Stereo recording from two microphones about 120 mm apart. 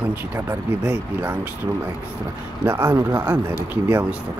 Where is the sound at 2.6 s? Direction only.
15° right (ahead or behind).